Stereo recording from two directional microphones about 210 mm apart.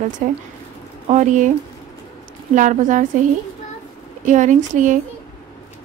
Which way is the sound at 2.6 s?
35° right (ahead or behind).